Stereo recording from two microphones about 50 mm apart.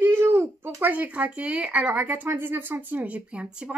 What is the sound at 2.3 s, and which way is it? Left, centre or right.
Speech, right.